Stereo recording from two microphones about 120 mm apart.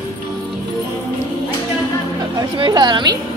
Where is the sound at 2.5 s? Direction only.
40° right (ahead or behind).